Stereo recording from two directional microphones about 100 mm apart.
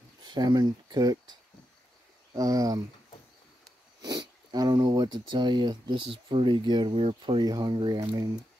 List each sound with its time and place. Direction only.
0.2 s speech: 45° right (ahead or behind)
4.0 s speech: 45° right (ahead or behind); by 7.2 s 65° right (ahead or behind)
7.2 s speech: 50° right (ahead or behind)